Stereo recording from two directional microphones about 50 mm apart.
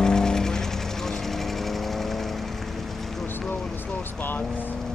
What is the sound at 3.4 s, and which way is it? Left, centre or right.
Vehicle, left.